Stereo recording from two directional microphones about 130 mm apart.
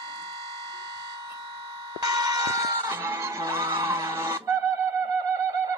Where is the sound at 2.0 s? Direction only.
30° right (ahead or behind).